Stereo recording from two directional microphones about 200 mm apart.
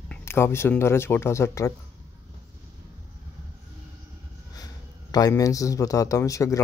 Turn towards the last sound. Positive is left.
turn(degrees=15)  # may be behind; listen again after turning